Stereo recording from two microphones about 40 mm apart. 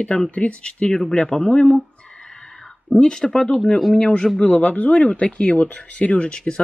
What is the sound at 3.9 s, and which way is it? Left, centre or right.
Speech, left.